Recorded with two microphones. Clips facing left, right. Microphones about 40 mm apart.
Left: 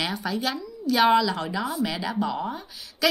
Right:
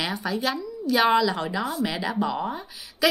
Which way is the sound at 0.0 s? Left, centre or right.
Centre.